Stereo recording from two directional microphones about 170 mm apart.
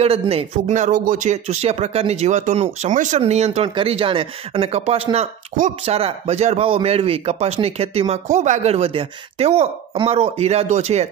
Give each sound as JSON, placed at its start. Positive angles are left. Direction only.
{"t": 0.0, "sound": "speech", "side_deg": -35}